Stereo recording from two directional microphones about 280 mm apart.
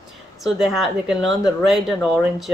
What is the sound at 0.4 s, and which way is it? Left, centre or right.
Speech, centre.